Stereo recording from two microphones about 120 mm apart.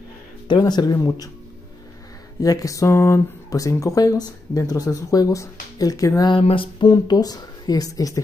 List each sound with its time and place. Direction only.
0.5 s speech: 35° left (ahead or behind)
2.4 s speech: 30° left (ahead or behind)
6.4 s a sound: 45° left (ahead or behind)
6.9 s speech: 30° left (ahead or behind)